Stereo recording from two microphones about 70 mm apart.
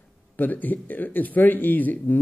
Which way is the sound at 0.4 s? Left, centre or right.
Left.